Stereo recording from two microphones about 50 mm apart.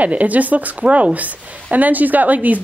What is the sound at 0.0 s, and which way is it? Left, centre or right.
A woman's voice, right.